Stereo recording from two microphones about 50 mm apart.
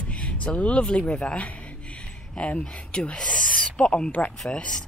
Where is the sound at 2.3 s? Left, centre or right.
Left.